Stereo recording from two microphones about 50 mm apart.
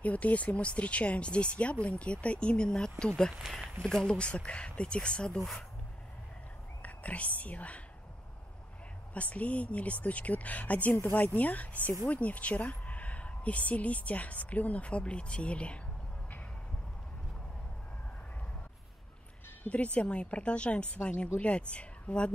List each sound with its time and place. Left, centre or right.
0.0 s a woman's voice: left; by 4.1 s centre
4.1 s a woman's voice: left
6.8 s speech: left
9.1 s a woman's voice: left
19.6 s a woman's voice: left